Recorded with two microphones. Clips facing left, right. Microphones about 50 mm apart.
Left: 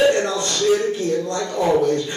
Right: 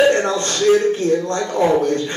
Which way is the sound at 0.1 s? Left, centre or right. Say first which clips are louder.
Right 2 dB; right.